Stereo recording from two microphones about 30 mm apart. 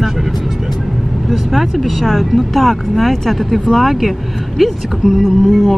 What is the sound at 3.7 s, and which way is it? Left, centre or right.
Speech, centre.